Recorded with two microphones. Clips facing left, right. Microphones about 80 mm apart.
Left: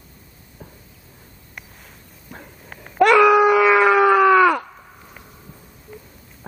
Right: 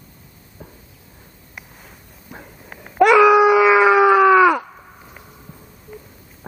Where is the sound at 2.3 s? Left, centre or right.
Centre.